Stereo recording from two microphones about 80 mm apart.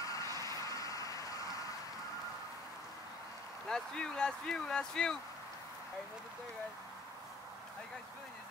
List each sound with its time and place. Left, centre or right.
0.0 s vehicle: left
3.6 s speech: centre